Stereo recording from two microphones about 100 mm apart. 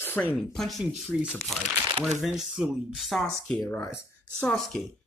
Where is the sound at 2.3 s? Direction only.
5° right (ahead or behind).